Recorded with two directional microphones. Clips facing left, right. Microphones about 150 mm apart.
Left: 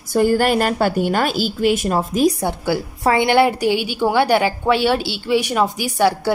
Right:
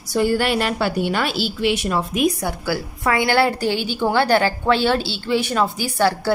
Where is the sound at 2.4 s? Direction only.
25° left (ahead or behind).